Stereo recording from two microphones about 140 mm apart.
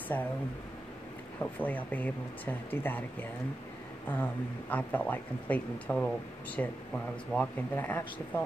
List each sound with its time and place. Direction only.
0.1 s speech: 20° left (ahead or behind)
1.4 s speech: 10° left (ahead or behind)